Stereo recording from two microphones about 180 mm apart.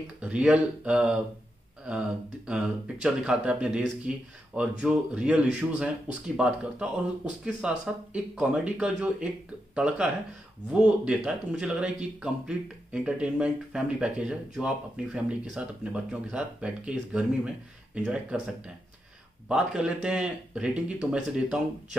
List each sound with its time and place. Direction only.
0.2 s speech: 5° right (ahead or behind)
19.5 s speech: 5° right (ahead or behind)